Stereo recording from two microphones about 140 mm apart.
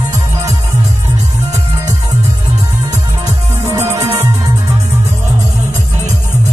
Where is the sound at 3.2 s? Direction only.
20° right (ahead or behind).